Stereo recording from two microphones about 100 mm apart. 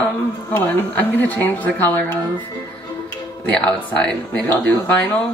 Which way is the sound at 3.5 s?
10° left (ahead or behind).